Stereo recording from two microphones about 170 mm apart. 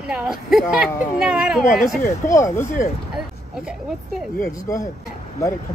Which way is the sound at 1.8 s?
15° left (ahead or behind).